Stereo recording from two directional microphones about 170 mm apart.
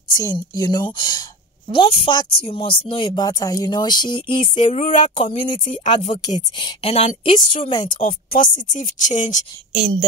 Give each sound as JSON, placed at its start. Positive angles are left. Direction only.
{"t": 0.1, "sound": "speech", "side_deg": 20}
{"t": 4.6, "sound": "speech", "side_deg": 45}
{"t": 4.9, "sound": "speech", "side_deg": 30}
{"t": 8.0, "sound": "speech", "side_deg": 55}